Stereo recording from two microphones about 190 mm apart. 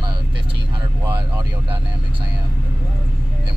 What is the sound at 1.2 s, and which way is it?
Speech, 25° right (ahead or behind).